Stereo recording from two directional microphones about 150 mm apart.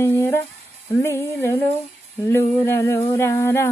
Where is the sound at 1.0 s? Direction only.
20° left (ahead or behind).